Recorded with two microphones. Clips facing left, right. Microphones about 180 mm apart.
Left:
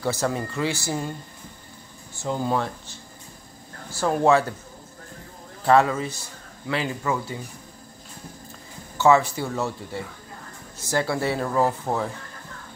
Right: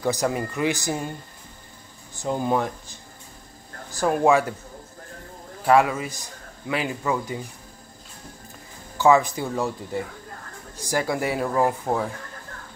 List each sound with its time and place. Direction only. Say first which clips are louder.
0.0 s a man's voice: right 1 dB; 15° right (ahead or behind)
2.1 s a man's voice: right 1 dB; 15° right (ahead or behind)
5.7 s a man's voice: even; 10° right (ahead or behind)
8.9 s a man's voice: even; 15° right (ahead or behind)